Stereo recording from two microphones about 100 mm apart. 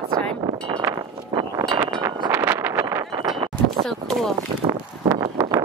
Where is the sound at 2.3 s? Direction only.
20° right (ahead or behind).